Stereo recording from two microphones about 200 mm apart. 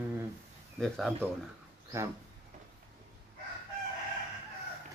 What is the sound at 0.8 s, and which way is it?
Speech, centre (ahead or behind).